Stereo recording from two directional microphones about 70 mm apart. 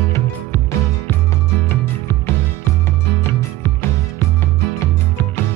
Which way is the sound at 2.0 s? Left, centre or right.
Left.